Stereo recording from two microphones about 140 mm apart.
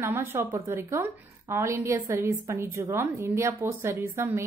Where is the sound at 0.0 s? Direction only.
15° right (ahead or behind).